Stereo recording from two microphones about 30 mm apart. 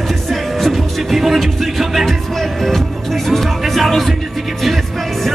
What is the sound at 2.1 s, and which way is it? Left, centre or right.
Speech, centre.